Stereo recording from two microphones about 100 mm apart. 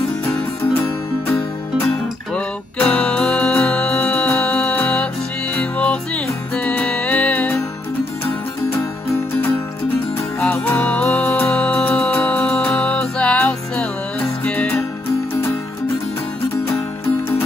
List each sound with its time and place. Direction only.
0.6 s music: 25° left (ahead or behind)
2.3 s music: 10° left (ahead or behind)
10.5 s music: 20° left (ahead or behind)